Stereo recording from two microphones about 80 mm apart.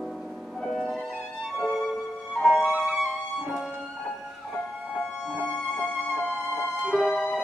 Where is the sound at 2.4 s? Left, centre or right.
Centre.